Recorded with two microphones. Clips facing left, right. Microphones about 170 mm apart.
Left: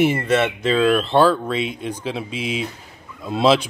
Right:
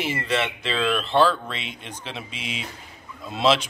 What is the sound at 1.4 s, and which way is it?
Speech, 10° left (ahead or behind).